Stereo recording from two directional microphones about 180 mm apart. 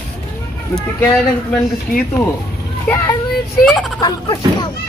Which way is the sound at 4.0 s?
25° left (ahead or behind).